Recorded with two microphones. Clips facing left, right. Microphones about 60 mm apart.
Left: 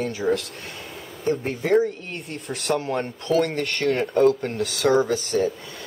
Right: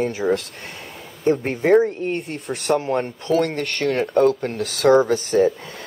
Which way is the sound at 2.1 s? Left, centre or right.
Centre.